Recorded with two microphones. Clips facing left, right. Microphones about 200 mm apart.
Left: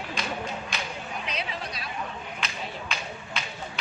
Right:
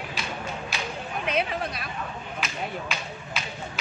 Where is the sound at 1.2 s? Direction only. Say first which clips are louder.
Right 10 dB; 55° right (ahead or behind).